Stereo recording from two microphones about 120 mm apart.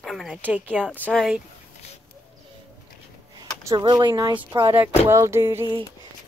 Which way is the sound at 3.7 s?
40° right (ahead or behind).